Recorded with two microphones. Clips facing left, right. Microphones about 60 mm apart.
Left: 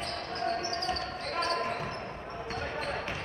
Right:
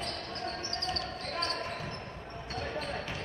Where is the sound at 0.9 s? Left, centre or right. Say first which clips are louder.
Left 3 dB; left.